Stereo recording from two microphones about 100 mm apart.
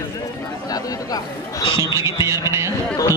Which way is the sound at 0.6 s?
40° left (ahead or behind).